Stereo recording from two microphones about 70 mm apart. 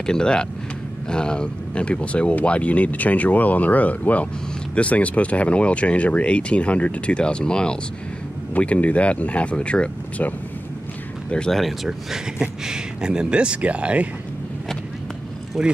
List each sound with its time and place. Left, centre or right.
0.0 s speech: centre
11.3 s speech: centre
11.6 s speech: centre
15.6 s speech: centre